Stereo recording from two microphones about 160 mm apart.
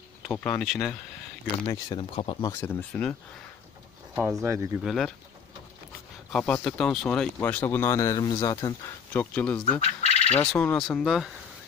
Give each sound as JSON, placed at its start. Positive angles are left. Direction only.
{"t": 0.3, "sound": "speech", "side_deg": 5}
{"t": 1.7, "sound": "speech", "side_deg": 25}
{"t": 2.1, "sound": "speech", "side_deg": 35}
{"t": 2.6, "sound": "speech", "side_deg": 5}
{"t": 4.1, "sound": "speech", "side_deg": -15}
{"t": 4.8, "sound": "speech", "side_deg": 0}
{"t": 6.3, "sound": "speech", "side_deg": 5}
{"t": 9.1, "sound": "speech", "side_deg": 10}
{"t": 9.7, "sound": "frog", "side_deg": 40}
{"t": 10.4, "sound": "speech", "side_deg": 5}